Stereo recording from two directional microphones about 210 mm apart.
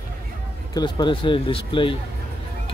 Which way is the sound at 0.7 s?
20° left (ahead or behind).